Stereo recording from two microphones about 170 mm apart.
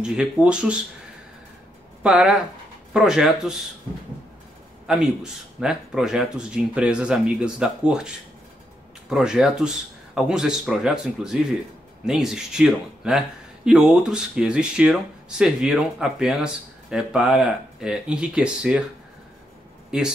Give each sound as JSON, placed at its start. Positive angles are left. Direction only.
{"t": 0.0, "sound": "a man's voice", "side_deg": -5}
{"t": 2.0, "sound": "a man's voice", "side_deg": -5}
{"t": 4.8, "sound": "a man's voice", "side_deg": -5}
{"t": 9.1, "sound": "a man's voice", "side_deg": -5}
{"t": 19.9, "sound": "a man's voice", "side_deg": -5}